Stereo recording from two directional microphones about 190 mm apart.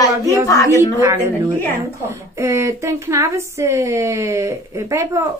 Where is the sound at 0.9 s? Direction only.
15° right (ahead or behind).